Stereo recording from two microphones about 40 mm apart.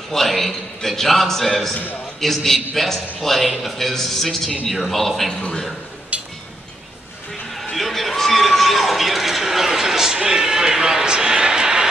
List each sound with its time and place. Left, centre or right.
0.1 s a man's voice: centre
5.3 s a man's voice: left
7.7 s a sound: centre